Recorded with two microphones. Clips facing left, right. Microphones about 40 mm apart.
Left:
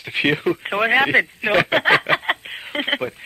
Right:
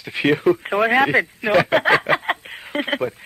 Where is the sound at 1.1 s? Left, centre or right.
Left.